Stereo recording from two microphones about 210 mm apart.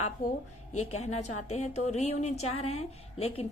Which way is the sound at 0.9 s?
30° left (ahead or behind).